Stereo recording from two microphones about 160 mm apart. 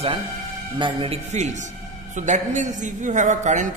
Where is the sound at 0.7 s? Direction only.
30° right (ahead or behind).